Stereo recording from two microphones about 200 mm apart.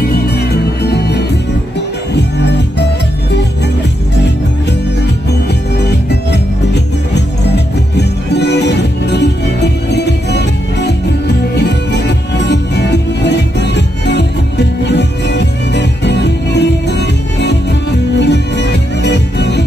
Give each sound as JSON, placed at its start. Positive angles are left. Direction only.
{"t": 0.1, "sound": "music", "side_deg": 55}
{"t": 6.0, "sound": "music", "side_deg": 60}